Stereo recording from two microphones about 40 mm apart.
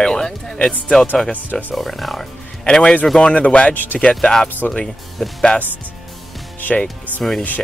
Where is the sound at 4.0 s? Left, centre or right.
Centre.